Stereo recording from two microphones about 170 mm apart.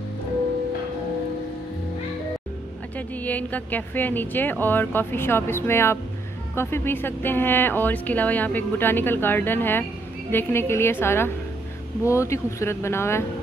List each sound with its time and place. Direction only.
3.0 s speech: 10° left (ahead or behind)